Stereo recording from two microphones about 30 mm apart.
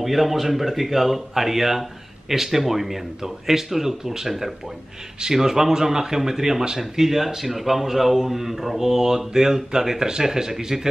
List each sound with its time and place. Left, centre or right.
0.0 s speech: centre
4.3 s speech: centre